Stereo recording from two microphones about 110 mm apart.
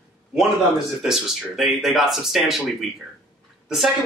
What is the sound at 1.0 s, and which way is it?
Speech, 5° right (ahead or behind).